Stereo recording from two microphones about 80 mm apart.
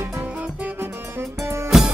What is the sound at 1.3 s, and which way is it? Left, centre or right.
Music, right.